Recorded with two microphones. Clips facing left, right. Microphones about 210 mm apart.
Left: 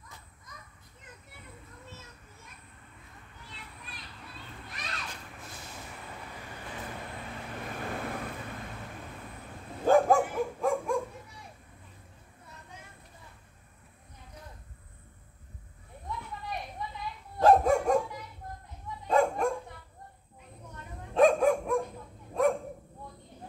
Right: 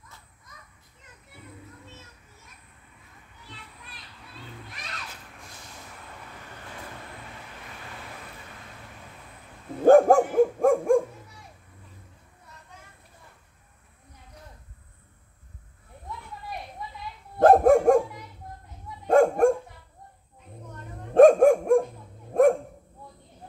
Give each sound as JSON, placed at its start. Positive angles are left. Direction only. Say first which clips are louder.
{"t": 7.8, "sound": "vehicle", "louder": "left 9 dB", "side_deg": 55}
{"t": 9.8, "sound": "dog", "louder": "right 7 dB", "side_deg": -50}
{"t": 17.4, "sound": "dog", "louder": "right 6 dB", "side_deg": -50}
{"t": 19.0, "sound": "dog", "louder": "right 8 dB", "side_deg": -50}
{"t": 21.1, "sound": "dog", "louder": "right 8 dB", "side_deg": -50}